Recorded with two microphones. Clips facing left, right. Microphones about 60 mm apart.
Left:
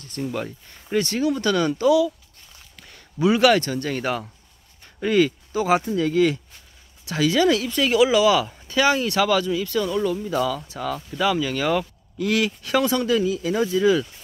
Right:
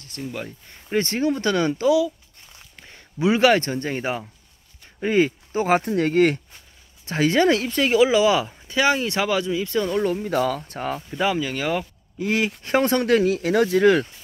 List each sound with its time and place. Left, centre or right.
0.0 s speech: centre
0.9 s speech: right
7.1 s speech: right
10.7 s speech: right
11.1 s speech: right
12.2 s speech: right